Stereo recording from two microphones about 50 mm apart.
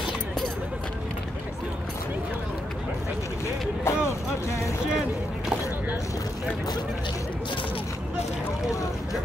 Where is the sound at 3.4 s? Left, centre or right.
Left.